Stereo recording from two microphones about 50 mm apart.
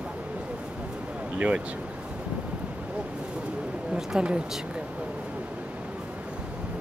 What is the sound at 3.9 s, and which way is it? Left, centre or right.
Speech, centre.